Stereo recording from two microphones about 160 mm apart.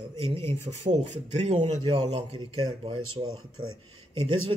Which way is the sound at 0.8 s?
45° right (ahead or behind).